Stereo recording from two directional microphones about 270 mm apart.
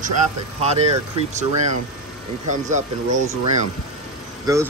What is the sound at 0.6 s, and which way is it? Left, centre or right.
Speech, right.